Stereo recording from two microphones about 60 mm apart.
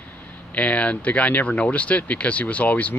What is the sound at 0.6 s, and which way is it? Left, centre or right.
Speech, left.